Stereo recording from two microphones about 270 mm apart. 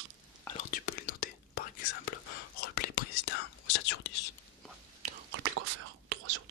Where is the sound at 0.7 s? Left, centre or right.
Left.